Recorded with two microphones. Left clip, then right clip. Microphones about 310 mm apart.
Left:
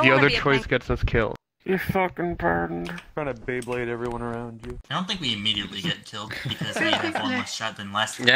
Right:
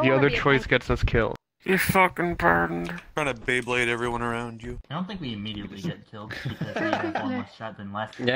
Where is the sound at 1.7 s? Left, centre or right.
Right.